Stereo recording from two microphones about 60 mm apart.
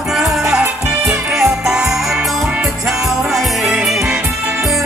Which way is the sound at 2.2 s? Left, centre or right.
Centre.